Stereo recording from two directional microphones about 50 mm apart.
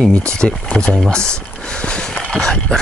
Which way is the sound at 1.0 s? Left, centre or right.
Centre.